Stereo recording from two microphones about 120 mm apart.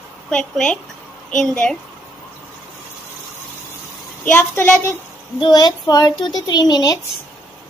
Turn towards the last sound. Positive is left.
turn(degrees=35)  # may be behind; listen again after turning